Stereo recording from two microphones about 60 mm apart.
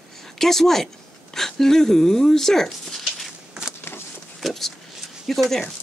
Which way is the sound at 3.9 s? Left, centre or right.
Left.